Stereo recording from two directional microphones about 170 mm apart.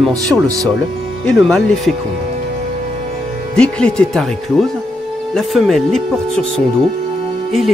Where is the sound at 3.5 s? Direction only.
5° left (ahead or behind).